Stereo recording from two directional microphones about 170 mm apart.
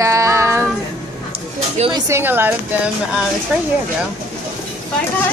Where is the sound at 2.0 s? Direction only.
15° right (ahead or behind).